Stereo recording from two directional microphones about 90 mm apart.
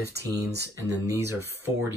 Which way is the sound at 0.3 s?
40° right (ahead or behind).